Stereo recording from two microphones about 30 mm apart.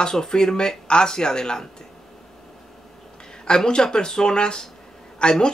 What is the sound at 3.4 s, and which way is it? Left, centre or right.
Speech, left.